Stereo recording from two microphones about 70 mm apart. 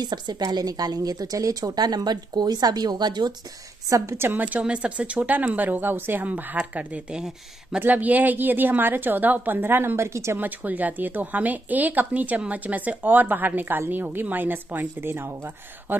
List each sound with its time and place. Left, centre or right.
0.0 s a woman's voice: right
0.5 s speech: right
3.9 s speech: right; by 7.8 s centre
7.8 s speech: right
10.4 s speech: right